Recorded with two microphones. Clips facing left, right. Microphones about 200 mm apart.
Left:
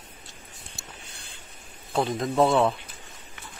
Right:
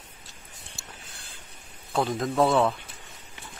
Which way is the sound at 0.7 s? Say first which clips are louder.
Left 1 dB; centre (ahead or behind).